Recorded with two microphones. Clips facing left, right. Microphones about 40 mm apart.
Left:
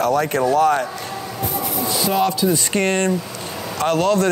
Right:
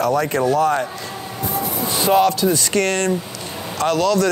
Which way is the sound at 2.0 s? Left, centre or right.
Right.